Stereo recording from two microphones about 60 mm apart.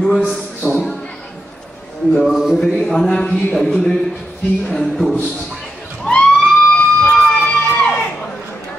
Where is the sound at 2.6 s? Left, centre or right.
Centre.